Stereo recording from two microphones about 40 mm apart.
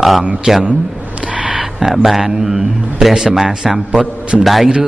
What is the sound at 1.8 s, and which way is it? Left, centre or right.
A man's voice, centre.